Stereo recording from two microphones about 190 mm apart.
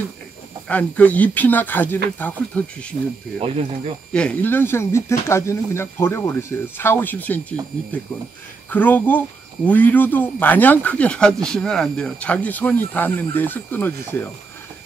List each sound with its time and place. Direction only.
0.7 s speech: 10° left (ahead or behind)
3.3 s speech: 30° right (ahead or behind)
4.1 s speech: 5° left (ahead or behind)
8.6 s speech: 10° left (ahead or behind)